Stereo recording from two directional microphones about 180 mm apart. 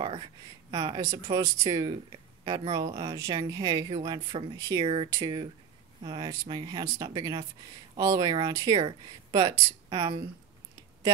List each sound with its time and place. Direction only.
0.0 s speech: 25° right (ahead or behind)
4.8 s speech: 30° right (ahead or behind)